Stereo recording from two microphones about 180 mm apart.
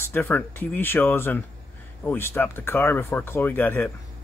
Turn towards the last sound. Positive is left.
turn(degrees=10)  # may be behind; listen again after turning